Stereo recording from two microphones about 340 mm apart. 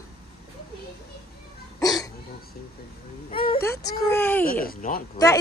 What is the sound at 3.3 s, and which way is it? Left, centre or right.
Vehicle, left.